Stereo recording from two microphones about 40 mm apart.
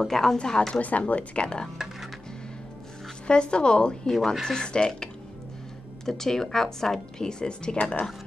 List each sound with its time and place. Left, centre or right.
0.0 s speech: centre
0.4 s a woman's voice: left
0.7 s speech: left
3.3 s a woman's voice: left
4.1 s speech: centre
4.6 s a woman's voice: left
6.0 s speech: centre
7.7 s speech: left